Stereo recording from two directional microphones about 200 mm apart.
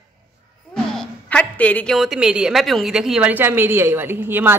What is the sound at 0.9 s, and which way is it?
A woman's voice, 5° left (ahead or behind).